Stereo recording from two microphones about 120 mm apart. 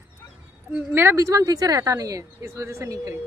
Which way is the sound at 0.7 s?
20° right (ahead or behind).